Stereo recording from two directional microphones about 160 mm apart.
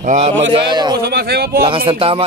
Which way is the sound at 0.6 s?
25° right (ahead or behind).